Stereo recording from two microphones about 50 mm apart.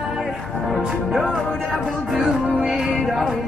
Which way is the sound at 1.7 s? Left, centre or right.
Centre.